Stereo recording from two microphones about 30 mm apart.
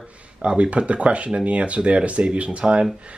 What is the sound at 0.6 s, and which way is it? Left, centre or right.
Speech, right.